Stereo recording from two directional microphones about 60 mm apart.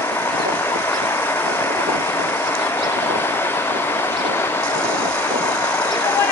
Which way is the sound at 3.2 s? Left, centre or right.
Left.